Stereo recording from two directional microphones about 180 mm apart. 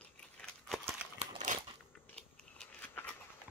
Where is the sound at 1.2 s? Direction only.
40° right (ahead or behind).